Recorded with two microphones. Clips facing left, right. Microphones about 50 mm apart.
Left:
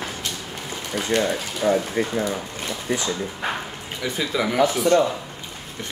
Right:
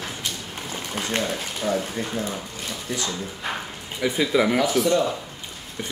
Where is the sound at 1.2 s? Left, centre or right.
Centre.